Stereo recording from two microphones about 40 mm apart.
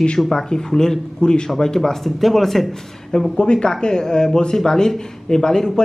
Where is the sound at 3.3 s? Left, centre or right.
Left.